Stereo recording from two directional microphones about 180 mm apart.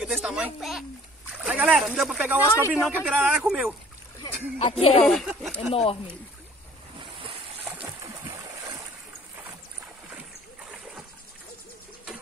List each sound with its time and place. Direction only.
0.0 s a sound: 5° right (ahead or behind)
1.4 s speech: 5° right (ahead or behind)
4.6 s speech: 35° left (ahead or behind)
5.0 s speech: centre (ahead or behind)
5.7 s speech: 35° left (ahead or behind)